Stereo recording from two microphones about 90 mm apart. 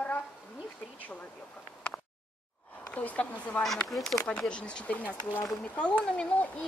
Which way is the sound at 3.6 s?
Centre (ahead or behind).